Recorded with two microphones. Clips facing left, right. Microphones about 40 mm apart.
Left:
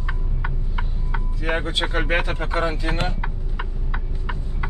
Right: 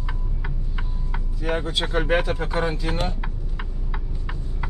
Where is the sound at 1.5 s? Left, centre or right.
Left.